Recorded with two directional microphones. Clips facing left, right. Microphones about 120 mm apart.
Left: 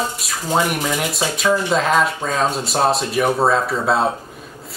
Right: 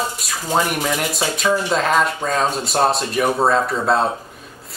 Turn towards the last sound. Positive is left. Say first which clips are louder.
# left 3 dB
turn(degrees=0)  # may be behind; listen again after turning